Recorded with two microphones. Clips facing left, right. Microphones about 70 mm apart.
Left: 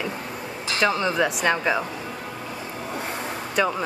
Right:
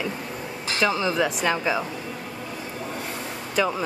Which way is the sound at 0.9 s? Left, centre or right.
Centre.